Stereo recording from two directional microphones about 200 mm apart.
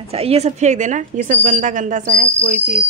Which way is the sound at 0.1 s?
30° right (ahead or behind).